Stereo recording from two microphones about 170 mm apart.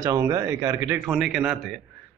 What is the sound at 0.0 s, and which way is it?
Speech, 20° right (ahead or behind).